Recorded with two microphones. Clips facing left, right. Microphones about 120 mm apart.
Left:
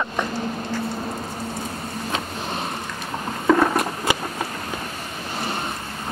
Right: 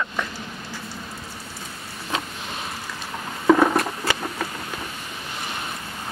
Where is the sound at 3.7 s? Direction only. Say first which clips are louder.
Left 1 dB; 15° left (ahead or behind).